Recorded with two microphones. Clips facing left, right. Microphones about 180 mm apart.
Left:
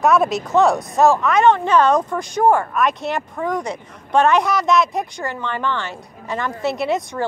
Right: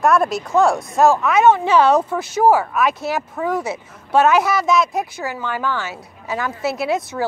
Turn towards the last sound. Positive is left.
turn(degrees=0)  # may be behind; listen again after turning